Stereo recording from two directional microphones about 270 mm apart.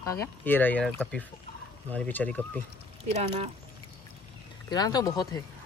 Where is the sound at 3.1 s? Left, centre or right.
Right.